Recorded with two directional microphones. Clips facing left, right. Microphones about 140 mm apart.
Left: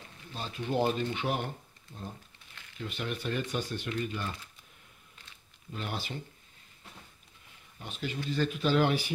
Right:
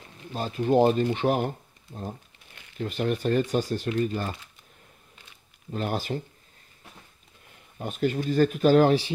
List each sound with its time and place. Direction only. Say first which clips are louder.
0.3 s speech: right 10 dB; 45° right (ahead or behind)
2.8 s speech: right 9 dB; 45° right (ahead or behind)
5.7 s speech: right 9 dB; 45° right (ahead or behind)
7.8 s speech: right 10 dB; 45° right (ahead or behind)